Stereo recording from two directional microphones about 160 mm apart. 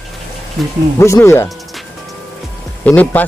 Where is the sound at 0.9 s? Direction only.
15° left (ahead or behind).